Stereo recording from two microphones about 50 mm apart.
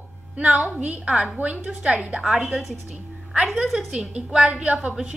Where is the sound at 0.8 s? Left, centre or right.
Right.